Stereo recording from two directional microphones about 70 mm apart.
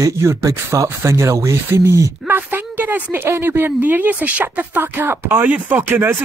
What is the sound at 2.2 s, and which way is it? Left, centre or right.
A woman's voice, right.